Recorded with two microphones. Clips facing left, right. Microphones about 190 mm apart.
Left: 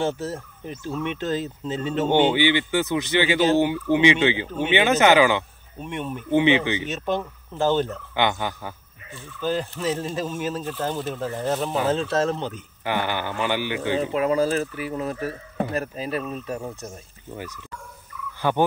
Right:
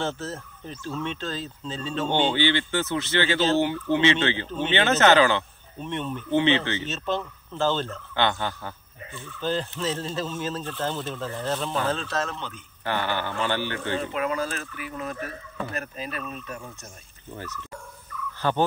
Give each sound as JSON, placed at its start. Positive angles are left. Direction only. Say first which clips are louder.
{"t": 0.0, "sound": "speech", "louder": "left 4 dB", "side_deg": 10}
{"t": 12.8, "sound": "speech", "louder": "left 2 dB", "side_deg": 15}
{"t": 14.1, "sound": "speech", "louder": "left 7 dB", "side_deg": 30}
{"t": 18.4, "sound": "speech", "louder": "left 2 dB", "side_deg": 15}